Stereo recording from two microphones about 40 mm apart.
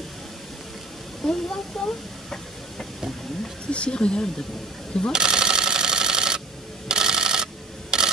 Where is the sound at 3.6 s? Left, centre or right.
Left.